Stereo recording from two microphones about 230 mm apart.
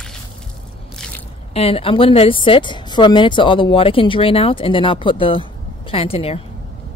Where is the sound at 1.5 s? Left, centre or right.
Left.